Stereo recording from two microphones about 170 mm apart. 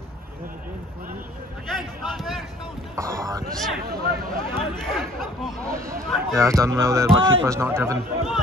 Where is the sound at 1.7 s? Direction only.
Centre (ahead or behind).